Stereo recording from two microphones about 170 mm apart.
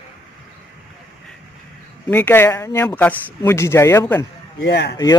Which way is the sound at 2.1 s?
10° left (ahead or behind).